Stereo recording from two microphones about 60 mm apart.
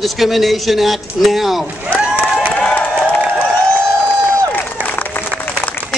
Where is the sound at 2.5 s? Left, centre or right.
Left.